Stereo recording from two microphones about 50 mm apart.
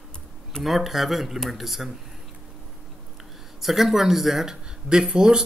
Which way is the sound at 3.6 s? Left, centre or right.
Centre.